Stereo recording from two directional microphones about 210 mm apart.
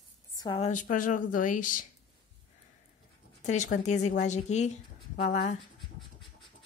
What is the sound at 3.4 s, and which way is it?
Speech, 35° left (ahead or behind).